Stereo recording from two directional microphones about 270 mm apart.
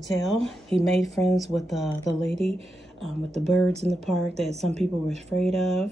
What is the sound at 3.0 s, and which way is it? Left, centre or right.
Speech, centre.